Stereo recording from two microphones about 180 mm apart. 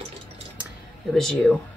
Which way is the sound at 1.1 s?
5° left (ahead or behind).